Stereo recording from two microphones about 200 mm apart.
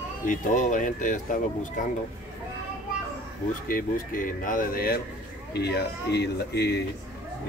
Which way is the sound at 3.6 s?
45° left (ahead or behind).